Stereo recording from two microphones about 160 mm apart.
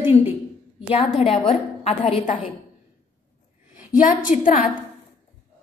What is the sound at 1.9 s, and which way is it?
Speech, 40° left (ahead or behind).